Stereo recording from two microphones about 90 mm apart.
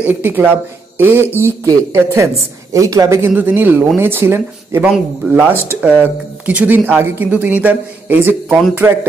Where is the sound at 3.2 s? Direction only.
20° right (ahead or behind).